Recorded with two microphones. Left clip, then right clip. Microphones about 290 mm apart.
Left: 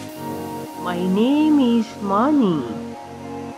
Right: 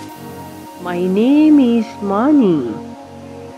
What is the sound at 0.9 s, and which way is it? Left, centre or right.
Mantra, centre.